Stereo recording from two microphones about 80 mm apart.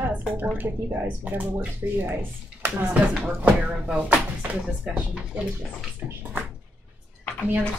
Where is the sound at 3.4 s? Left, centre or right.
Centre.